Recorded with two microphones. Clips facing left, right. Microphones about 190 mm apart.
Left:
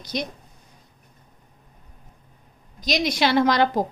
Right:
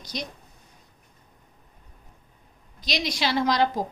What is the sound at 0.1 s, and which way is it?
Speech, 60° left (ahead or behind).